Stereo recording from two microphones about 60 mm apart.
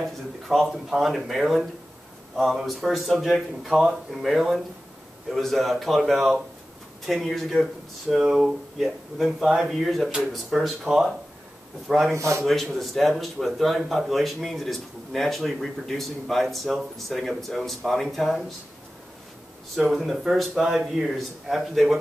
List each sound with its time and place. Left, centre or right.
0.0 s speech: centre
8.2 s speech: centre
8.7 s speech: centre
12.1 s a man's voice: right
12.7 s speech: centre
19.7 s speech: centre